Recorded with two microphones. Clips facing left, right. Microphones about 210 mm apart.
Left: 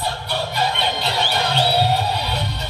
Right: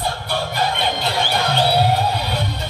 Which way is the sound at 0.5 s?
50° right (ahead or behind).